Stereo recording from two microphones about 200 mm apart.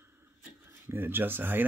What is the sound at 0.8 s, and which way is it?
Speech, 10° right (ahead or behind).